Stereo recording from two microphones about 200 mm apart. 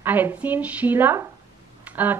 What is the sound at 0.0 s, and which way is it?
Speech, 10° right (ahead or behind).